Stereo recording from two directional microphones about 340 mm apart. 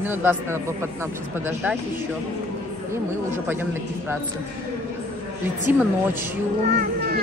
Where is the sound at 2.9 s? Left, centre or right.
Centre.